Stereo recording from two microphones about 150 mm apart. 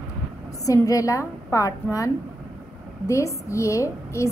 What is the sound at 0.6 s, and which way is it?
A woman's voice, 20° left (ahead or behind).